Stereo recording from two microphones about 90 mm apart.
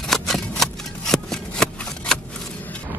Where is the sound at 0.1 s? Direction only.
5° left (ahead or behind).